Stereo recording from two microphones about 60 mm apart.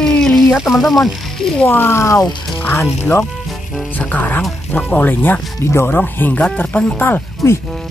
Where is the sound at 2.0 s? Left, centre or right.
Left.